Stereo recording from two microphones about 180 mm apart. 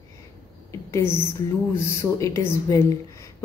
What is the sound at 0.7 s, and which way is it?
A woman's voice, 15° left (ahead or behind).